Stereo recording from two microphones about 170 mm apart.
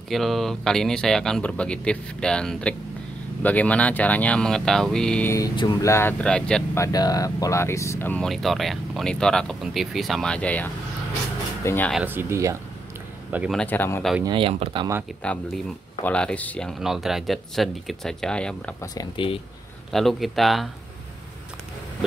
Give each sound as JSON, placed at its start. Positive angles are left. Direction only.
{"t": 0.1, "sound": "speech", "side_deg": 0}
{"t": 5.3, "sound": "speech", "side_deg": 20}
{"t": 6.8, "sound": "speech", "side_deg": 20}
{"t": 11.9, "sound": "speech", "side_deg": -10}
{"t": 13.6, "sound": "speech", "side_deg": 10}
{"t": 14.2, "sound": "speech", "side_deg": -30}
{"t": 15.2, "sound": "speech", "side_deg": 5}
{"t": 19.9, "sound": "speech", "side_deg": 0}